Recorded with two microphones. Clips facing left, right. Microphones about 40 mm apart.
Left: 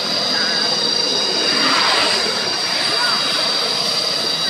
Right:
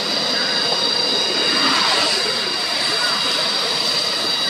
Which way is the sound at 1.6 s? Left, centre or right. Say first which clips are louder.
Left 3 dB; centre.